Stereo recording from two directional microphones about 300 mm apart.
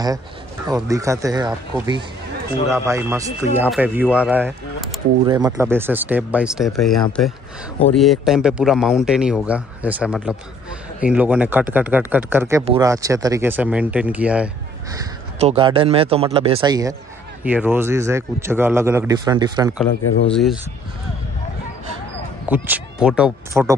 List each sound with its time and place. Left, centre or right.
0.8 s speech: centre
15.3 s speech: centre
20.0 s speech: left
20.2 s speech: centre
22.5 s speech: centre